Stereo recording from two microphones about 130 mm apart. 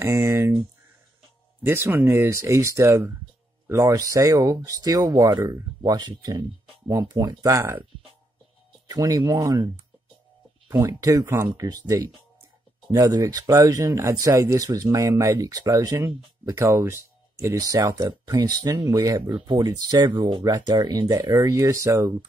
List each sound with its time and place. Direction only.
0.0 s speech: 20° right (ahead or behind)
8.8 s speech: 30° right (ahead or behind)
10.7 s speech: 25° right (ahead or behind)